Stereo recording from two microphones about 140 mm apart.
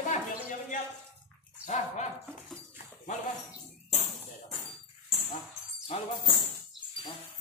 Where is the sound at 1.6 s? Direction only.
55° left (ahead or behind).